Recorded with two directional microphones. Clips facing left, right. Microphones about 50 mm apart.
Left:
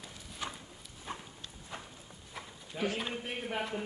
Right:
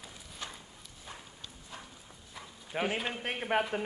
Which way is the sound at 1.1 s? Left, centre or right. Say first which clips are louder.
Left 5 dB; left.